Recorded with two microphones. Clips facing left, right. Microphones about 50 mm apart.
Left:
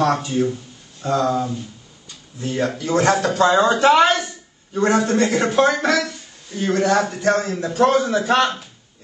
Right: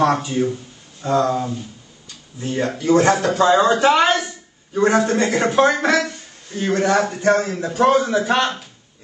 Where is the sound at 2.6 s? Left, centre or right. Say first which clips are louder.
Right 5 dB; right.